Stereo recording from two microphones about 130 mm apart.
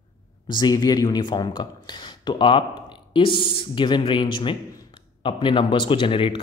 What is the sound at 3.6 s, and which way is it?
A man's voice, 40° left (ahead or behind).